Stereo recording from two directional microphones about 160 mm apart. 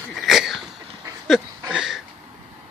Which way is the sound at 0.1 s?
Centre (ahead or behind).